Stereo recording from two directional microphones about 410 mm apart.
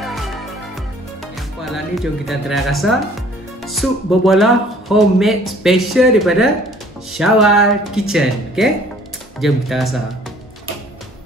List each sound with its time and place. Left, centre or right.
0.0 s music: centre
1.6 s speech: centre